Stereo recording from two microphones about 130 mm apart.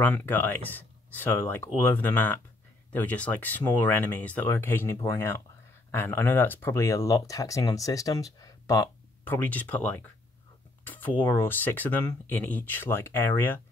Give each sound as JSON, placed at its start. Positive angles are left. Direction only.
{"t": 0.0, "sound": "speech", "side_deg": 15}
{"t": 9.3, "sound": "speech", "side_deg": 15}